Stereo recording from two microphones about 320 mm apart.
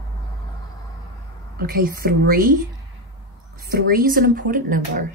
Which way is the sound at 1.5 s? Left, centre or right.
Right.